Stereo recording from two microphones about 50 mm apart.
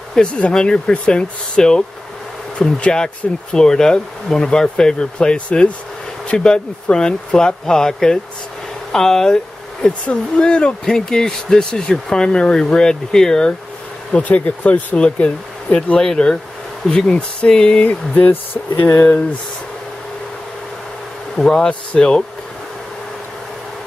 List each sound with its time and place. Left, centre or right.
0.2 s speech: centre
14.1 s speech: left
16.0 s speech: centre
17.8 s speech: left
21.4 s speech: centre